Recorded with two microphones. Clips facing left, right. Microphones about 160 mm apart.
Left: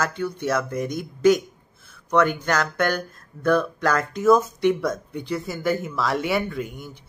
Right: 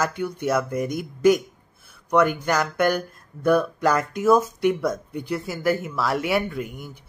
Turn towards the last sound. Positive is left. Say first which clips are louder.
# right 1 dB
turn(degrees=-5)  # may be behind; listen again after turning